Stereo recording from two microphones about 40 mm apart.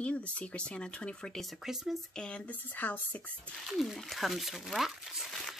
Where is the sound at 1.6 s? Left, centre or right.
Centre.